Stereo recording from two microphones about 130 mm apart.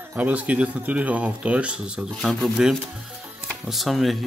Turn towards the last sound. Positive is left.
turn(degrees=0)  # may be behind; listen again after turning